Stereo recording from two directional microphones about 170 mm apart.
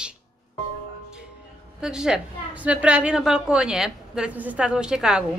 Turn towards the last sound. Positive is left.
turn(degrees=-5)  # may be behind; listen again after turning